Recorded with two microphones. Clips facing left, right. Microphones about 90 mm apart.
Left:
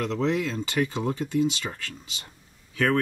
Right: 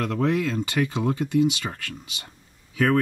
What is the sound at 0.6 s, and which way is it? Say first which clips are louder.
Speech: right 2 dB; 15° right (ahead or behind).